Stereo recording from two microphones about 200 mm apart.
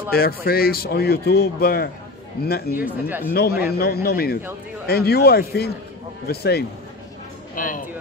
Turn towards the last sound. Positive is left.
turn(degrees=45)  # may be behind; listen again after turning